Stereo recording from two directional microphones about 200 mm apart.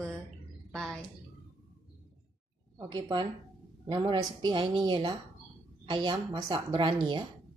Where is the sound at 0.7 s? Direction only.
Centre (ahead or behind).